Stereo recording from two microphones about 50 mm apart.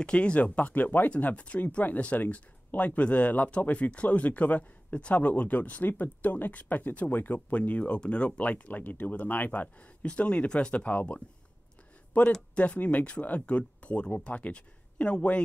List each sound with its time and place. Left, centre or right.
0.0 s speech: left